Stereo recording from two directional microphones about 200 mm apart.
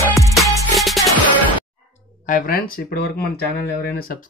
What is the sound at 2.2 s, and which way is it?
Speech, 45° left (ahead or behind).